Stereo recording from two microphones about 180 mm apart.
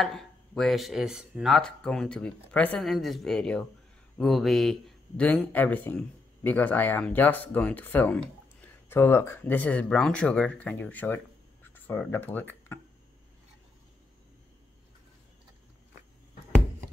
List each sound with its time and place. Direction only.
0.0 s a man's voice: centre (ahead or behind)